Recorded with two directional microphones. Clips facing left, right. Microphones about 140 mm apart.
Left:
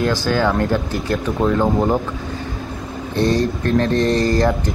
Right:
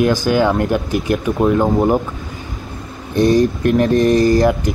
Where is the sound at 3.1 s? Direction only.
15° right (ahead or behind).